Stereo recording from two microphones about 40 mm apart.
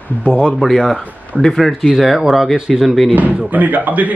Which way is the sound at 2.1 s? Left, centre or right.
Centre.